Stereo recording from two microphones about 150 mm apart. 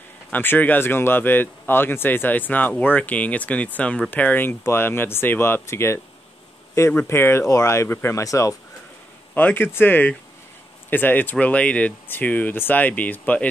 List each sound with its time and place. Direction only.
0.3 s speech: 10° left (ahead or behind)